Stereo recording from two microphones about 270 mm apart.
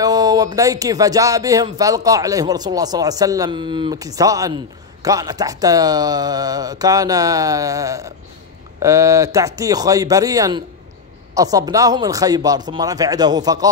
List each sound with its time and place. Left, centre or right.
0.0 s speech: centre